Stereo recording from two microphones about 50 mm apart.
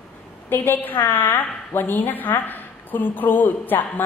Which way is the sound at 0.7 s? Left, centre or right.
Left.